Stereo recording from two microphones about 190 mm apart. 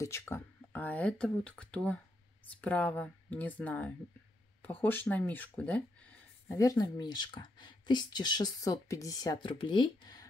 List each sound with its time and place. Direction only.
0.0 s speech: 15° left (ahead or behind)